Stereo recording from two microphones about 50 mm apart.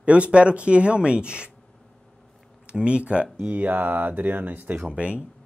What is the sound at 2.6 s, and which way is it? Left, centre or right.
Speech, right.